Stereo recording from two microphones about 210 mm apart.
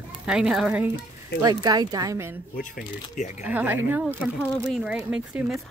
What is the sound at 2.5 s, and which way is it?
Speech, 40° left (ahead or behind).